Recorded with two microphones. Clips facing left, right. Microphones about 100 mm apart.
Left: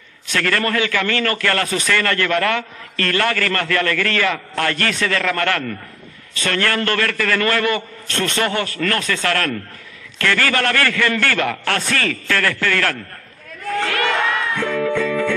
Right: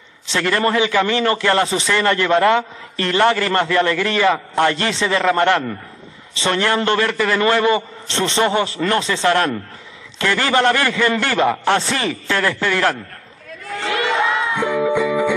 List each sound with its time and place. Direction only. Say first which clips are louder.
0.3 s a man's voice: right 2 dB; 20° right (ahead or behind)
13.8 s music: right 3 dB; 20° right (ahead or behind)